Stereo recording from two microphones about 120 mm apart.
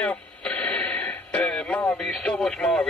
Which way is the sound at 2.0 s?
5° left (ahead or behind).